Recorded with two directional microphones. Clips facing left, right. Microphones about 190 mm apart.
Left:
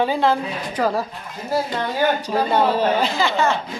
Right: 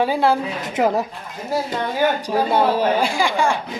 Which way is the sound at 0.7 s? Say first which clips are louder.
Right 3 dB; 20° right (ahead or behind).